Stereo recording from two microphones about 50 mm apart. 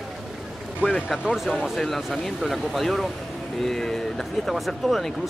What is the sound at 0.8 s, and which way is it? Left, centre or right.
Speech, left.